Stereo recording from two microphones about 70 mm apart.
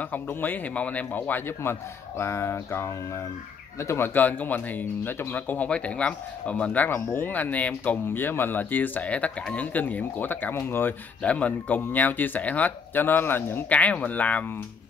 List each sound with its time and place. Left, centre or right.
0.0 s speech: left
4.1 s speech: left
11.2 s speech: centre